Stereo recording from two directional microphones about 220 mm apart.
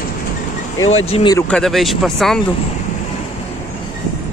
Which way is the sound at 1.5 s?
Centre (ahead or behind).